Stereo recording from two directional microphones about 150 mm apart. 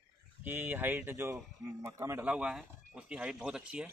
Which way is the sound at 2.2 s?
5° right (ahead or behind).